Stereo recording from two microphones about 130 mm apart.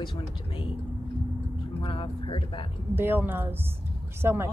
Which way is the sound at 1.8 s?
40° left (ahead or behind).